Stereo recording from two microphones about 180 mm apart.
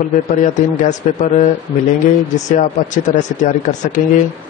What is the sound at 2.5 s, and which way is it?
A man's voice, 45° left (ahead or behind).